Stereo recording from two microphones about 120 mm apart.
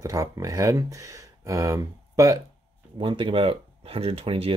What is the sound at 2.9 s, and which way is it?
Speech, 45° right (ahead or behind).